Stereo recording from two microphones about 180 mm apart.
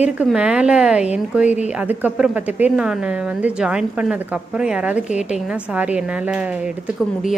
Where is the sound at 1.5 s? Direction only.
40° left (ahead or behind).